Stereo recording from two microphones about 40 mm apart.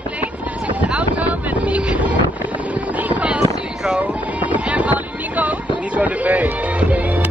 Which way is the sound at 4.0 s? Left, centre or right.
Right.